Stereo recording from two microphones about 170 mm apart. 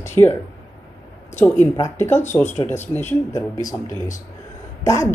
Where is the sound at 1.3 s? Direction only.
10° left (ahead or behind).